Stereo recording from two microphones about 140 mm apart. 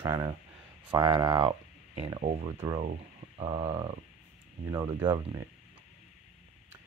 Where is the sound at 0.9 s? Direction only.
30° right (ahead or behind).